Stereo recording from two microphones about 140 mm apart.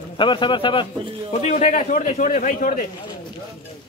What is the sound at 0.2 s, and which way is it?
Speech, 35° left (ahead or behind).